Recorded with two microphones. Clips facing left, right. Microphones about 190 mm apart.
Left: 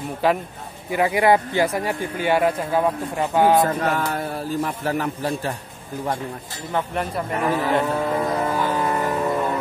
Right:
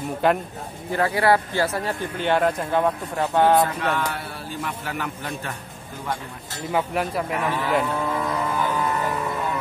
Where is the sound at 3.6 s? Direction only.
40° left (ahead or behind).